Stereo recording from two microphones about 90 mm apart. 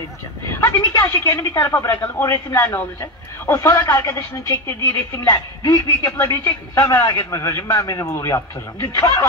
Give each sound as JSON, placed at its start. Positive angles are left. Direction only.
{"t": 0.5, "sound": "a woman's voice", "side_deg": 30}